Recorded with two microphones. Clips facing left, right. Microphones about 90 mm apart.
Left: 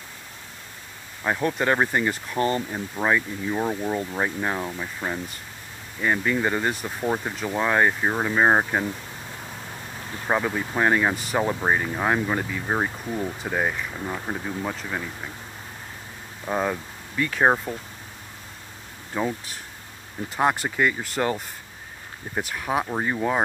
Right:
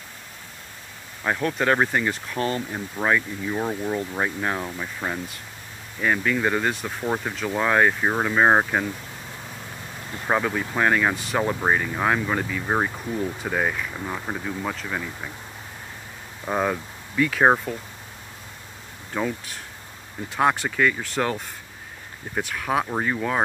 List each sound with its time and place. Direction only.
1.2 s speech: 5° left (ahead or behind)
10.3 s speech: 10° left (ahead or behind)
16.4 s speech: 5° right (ahead or behind)
20.3 s speech: 5° left (ahead or behind)
23.0 s speech: 20° left (ahead or behind)